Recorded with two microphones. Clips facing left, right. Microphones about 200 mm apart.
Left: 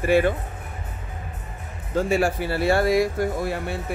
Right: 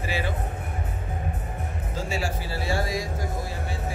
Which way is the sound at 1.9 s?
55° left (ahead or behind).